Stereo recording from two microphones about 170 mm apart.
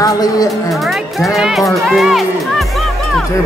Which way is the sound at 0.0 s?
20° left (ahead or behind).